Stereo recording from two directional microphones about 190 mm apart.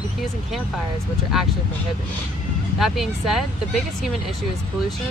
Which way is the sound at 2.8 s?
Centre (ahead or behind).